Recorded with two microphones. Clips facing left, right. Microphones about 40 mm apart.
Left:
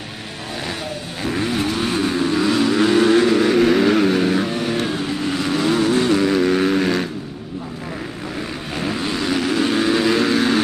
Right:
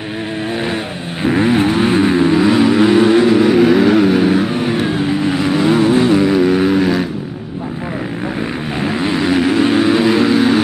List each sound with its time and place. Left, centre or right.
1.2 s vehicle: right
5.4 s vehicle: centre
9.0 s vehicle: right